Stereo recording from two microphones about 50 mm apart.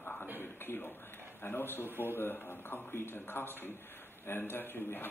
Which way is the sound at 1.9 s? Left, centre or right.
Right.